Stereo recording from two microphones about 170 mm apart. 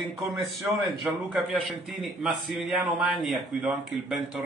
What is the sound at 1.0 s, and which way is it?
A man's voice, centre (ahead or behind).